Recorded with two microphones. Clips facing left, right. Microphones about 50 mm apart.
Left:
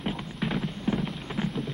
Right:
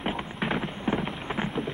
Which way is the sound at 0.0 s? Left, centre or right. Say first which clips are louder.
Right 2 dB; right.